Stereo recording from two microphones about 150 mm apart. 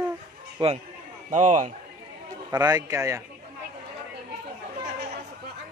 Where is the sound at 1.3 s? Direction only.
55° right (ahead or behind).